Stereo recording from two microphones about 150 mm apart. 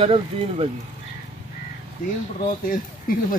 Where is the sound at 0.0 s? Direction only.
40° right (ahead or behind).